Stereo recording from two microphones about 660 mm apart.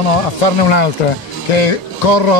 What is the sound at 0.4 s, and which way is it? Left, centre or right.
A man's voice, left.